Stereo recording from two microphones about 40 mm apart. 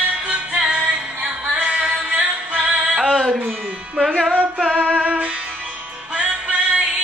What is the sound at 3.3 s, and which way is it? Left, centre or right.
Music, right.